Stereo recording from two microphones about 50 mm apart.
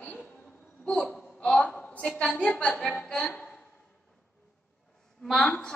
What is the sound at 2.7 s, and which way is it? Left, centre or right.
Speech, centre.